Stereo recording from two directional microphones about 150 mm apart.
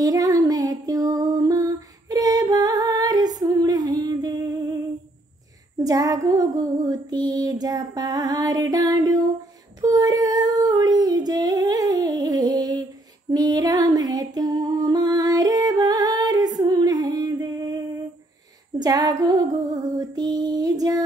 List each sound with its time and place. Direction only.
0.0 s music: 25° right (ahead or behind)
5.9 s female singing: 25° right (ahead or behind)